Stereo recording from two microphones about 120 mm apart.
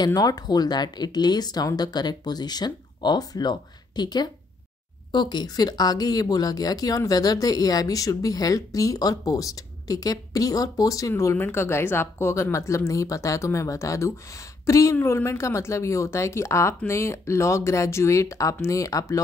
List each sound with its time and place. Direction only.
0.0 s speech: 35° left (ahead or behind)